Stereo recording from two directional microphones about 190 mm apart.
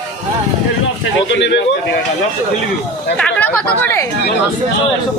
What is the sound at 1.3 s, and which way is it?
Speech, 65° left (ahead or behind).